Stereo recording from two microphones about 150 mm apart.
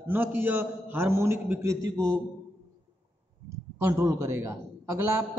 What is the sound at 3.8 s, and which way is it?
A man's voice, 20° right (ahead or behind).